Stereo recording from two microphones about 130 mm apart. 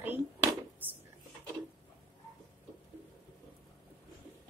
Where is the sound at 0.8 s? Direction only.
15° right (ahead or behind).